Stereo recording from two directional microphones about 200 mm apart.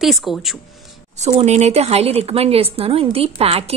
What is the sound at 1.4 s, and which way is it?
A woman's voice, 35° right (ahead or behind).